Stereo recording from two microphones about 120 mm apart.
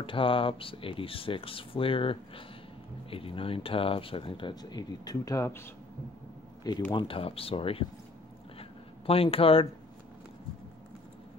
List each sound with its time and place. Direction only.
0.0 s speech: 45° left (ahead or behind); by 5.6 s 25° left (ahead or behind)
6.9 s speech: 50° left (ahead or behind)
8.5 s a sound: 55° left (ahead or behind)